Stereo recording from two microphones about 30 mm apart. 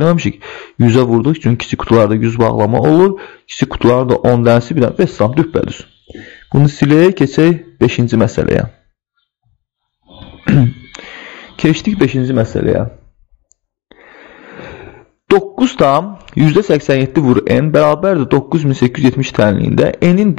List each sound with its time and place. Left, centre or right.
0.1 s speech: centre
10.0 s a sound: centre
13.8 s sigh: centre
15.4 s speech: centre